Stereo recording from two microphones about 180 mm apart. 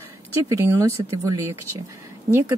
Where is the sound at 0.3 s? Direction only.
15° right (ahead or behind).